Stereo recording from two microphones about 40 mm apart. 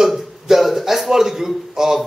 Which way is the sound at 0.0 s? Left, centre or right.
Centre.